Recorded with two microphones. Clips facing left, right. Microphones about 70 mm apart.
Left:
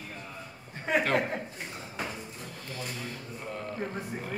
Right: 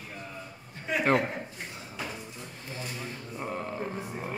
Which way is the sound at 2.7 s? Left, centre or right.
Right.